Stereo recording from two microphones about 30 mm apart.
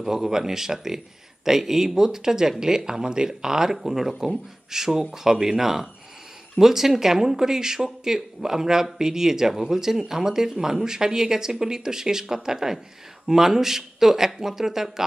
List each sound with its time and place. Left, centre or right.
0.0 s speech: centre